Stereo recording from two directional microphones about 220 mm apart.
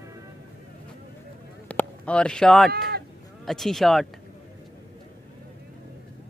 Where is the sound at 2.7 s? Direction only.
45° right (ahead or behind).